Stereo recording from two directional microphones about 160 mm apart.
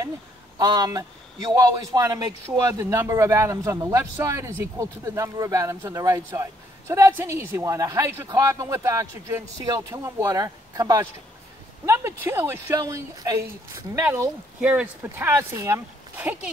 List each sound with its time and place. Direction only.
0.6 s a man's voice: 25° right (ahead or behind)